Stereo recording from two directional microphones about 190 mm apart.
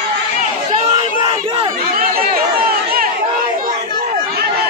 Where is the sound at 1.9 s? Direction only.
50° right (ahead or behind).